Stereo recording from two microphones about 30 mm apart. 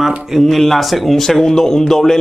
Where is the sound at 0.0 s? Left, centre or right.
Centre.